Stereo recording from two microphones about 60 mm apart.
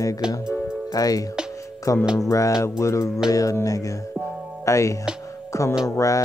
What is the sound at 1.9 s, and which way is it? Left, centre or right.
Music, left.